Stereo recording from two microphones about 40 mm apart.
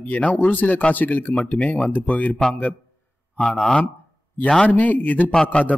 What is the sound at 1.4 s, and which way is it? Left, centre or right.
Speech, left.